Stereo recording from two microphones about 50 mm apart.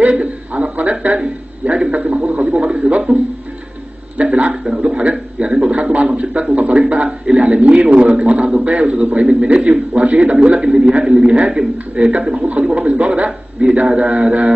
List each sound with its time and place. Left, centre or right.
0.0 s a man's voice: right
4.2 s a man's voice: right